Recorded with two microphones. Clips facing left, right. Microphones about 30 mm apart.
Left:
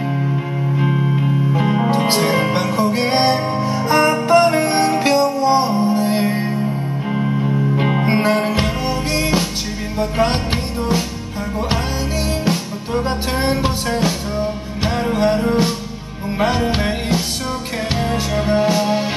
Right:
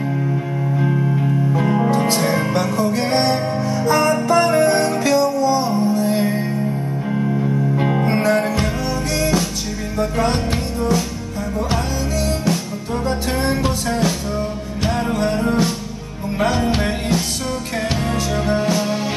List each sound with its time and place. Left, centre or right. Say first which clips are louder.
0.7 s music: left 1 dB; left
1.9 s music: left 1 dB; left
4.4 s music: even; left
12.4 s music: left 1 dB; left